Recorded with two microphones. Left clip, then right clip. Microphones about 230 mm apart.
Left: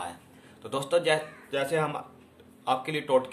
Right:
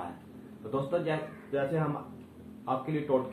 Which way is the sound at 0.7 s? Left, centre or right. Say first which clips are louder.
Left 6 dB; left.